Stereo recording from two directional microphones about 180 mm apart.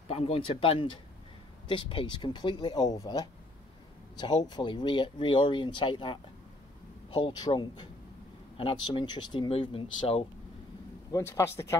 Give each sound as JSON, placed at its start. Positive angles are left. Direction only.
{"t": 0.1, "sound": "speech", "side_deg": 30}
{"t": 11.1, "sound": "speech", "side_deg": 20}